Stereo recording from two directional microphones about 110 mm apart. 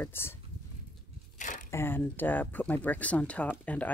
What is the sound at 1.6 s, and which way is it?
Speech, 20° left (ahead or behind).